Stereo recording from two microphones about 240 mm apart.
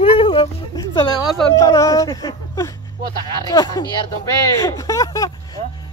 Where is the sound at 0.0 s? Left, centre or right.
Left.